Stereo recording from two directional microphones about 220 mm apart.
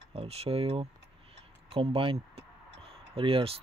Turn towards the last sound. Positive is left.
turn(degrees=-25)  # may be behind; listen again after turning